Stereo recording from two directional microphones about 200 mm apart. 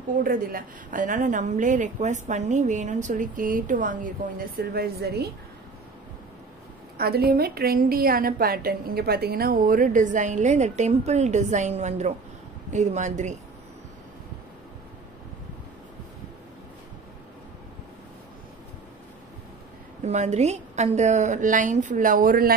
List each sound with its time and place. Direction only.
0.2 s a woman's voice: 45° right (ahead or behind)
7.0 s a woman's voice: 50° right (ahead or behind)
20.0 s a woman's voice: 35° right (ahead or behind)